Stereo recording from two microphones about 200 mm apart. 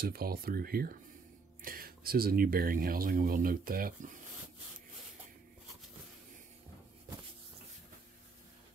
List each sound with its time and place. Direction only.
0.0 s speech: 50° right (ahead or behind)